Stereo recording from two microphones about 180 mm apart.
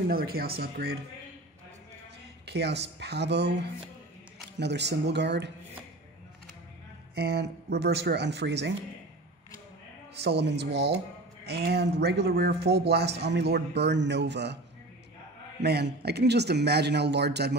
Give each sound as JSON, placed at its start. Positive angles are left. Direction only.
{"t": 0.1, "sound": "speech", "side_deg": -55}
{"t": 2.4, "sound": "speech", "side_deg": -70}
{"t": 7.2, "sound": "speech", "side_deg": -65}
{"t": 10.1, "sound": "speech", "side_deg": -70}
{"t": 15.6, "sound": "speech", "side_deg": -65}